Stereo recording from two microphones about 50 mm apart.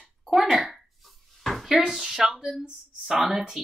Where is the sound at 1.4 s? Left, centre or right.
Centre.